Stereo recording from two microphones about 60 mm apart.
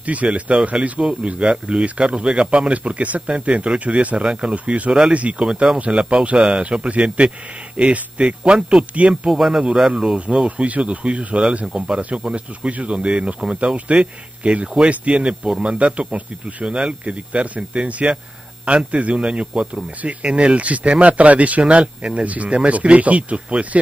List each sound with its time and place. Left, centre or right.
0.0 s speech: right
9.3 s speech: centre